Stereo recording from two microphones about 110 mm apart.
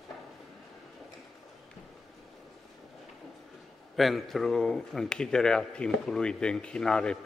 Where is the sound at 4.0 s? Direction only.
Centre (ahead or behind).